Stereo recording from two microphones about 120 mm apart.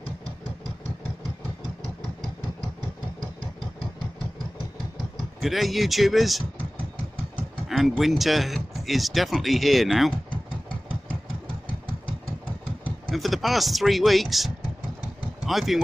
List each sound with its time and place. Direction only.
5.4 s speech: centre (ahead or behind)
7.6 s speech: centre (ahead or behind)
10.3 s engine: 45° left (ahead or behind)
13.1 s speech: centre (ahead or behind)